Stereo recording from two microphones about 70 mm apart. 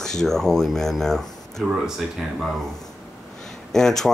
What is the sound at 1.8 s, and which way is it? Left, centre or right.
Speech, centre.